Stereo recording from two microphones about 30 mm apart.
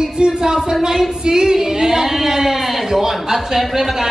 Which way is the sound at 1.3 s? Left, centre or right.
Centre.